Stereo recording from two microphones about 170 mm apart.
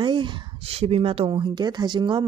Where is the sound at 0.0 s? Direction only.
30° right (ahead or behind).